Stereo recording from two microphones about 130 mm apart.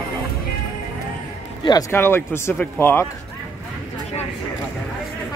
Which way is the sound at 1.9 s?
15° left (ahead or behind).